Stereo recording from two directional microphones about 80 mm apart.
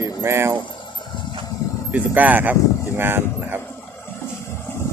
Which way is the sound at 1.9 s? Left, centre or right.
Right.